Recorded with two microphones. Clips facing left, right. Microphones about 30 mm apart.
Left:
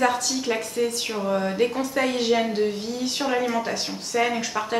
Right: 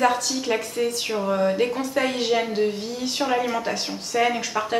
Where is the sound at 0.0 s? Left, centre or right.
Centre.